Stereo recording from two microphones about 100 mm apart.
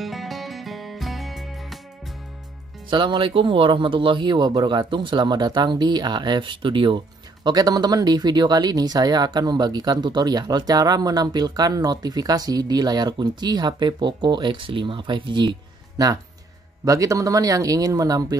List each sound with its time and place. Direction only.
0.0 s music: centre (ahead or behind)
2.9 s speech: 55° right (ahead or behind)
7.4 s speech: 40° right (ahead or behind)
16.8 s speech: 35° right (ahead or behind)